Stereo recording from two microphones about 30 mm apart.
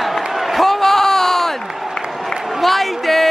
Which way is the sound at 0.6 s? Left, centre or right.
Centre.